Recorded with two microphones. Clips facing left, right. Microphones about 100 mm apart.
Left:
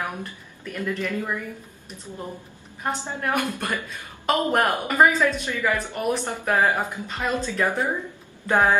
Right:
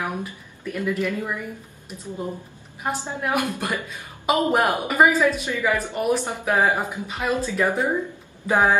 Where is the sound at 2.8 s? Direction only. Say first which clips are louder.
Right 1 dB; 5° right (ahead or behind).